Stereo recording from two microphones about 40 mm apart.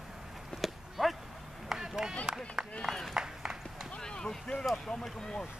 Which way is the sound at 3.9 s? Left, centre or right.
Centre.